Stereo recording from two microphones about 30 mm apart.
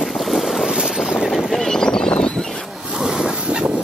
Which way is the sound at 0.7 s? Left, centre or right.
Right.